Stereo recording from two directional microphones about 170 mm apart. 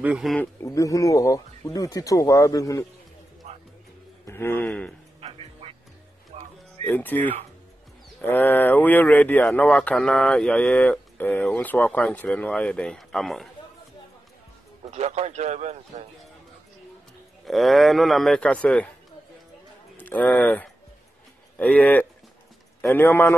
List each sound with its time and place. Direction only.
0.0 s a man's voice: 5° right (ahead or behind)
0.4 s speech: 15° left (ahead or behind)
4.3 s speech: 15° left (ahead or behind)
5.2 s music: 35° right (ahead or behind)
6.9 s speech: 10° left (ahead or behind)
14.9 s a man's voice: 40° right (ahead or behind)
17.5 s a man's voice: centre (ahead or behind)
20.0 s speech: 10° left (ahead or behind)